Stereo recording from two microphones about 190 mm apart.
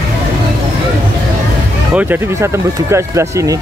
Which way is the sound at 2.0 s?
10° right (ahead or behind).